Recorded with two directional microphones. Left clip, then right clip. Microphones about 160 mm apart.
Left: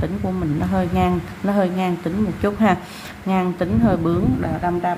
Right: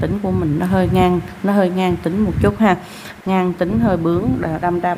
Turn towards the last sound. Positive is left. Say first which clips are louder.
# right 3 dB
turn(degrees=-30)  # may be behind; listen again after turning